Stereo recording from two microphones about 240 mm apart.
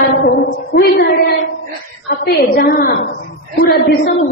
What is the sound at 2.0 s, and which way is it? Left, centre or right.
A woman's voice, left.